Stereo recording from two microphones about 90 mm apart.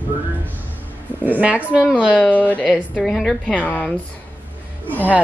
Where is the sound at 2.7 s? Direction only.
5° left (ahead or behind).